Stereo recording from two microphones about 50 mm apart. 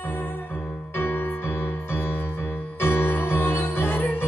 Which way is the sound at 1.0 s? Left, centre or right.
Left.